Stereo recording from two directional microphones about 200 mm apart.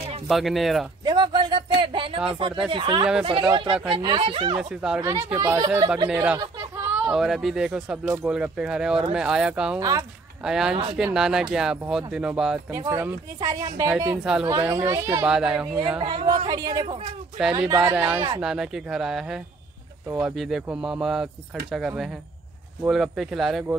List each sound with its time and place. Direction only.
0.3 s speech: centre (ahead or behind)
1.0 s speech: 20° right (ahead or behind)
4.6 s speech: 5° right (ahead or behind)
7.1 s speech: centre (ahead or behind)
9.8 s speech: 15° right (ahead or behind)
10.4 s speech: 5° right (ahead or behind)
12.7 s speech: 15° right (ahead or behind)
15.2 s speech: 5° right (ahead or behind)
16.0 s speech: 25° right (ahead or behind)
17.9 s speech: 5° right (ahead or behind)